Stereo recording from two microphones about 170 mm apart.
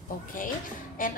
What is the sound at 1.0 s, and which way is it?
Speech, 55° left (ahead or behind).